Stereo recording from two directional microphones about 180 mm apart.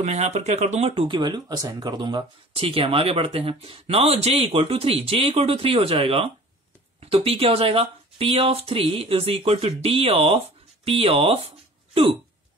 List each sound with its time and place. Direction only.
0.0 s speech: 40° right (ahead or behind)